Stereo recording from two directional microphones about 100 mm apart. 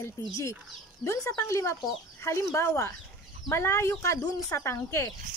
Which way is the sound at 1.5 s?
30° left (ahead or behind).